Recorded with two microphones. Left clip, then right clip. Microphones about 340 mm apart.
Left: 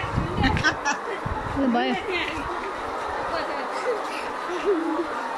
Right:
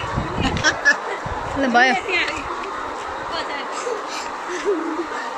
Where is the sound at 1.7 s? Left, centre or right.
Right.